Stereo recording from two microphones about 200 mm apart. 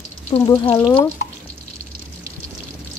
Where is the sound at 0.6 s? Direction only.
25° left (ahead or behind).